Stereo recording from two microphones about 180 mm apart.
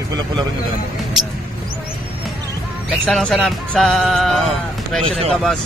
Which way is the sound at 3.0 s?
Centre (ahead or behind).